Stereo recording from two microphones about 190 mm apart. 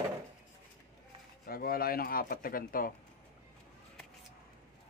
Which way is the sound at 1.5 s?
50° left (ahead or behind).